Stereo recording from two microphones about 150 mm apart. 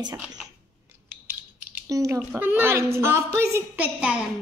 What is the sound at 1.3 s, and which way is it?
A woman's voice, 15° right (ahead or behind).